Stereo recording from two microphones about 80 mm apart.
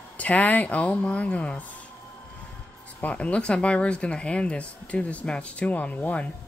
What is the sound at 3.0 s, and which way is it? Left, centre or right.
Speech, centre.